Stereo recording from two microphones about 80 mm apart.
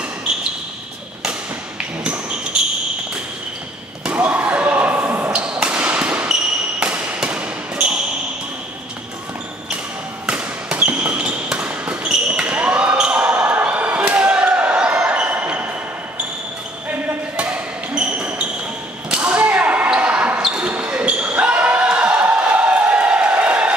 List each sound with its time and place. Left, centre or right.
4.0 s basketball bounce: centre
5.3 s a sound: centre
6.8 s basketball bounce: centre
10.2 s basketball bounce: centre
17.4 s basketball bounce: centre